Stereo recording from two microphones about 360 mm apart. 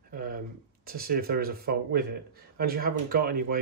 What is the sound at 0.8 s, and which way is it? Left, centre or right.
Speech, right.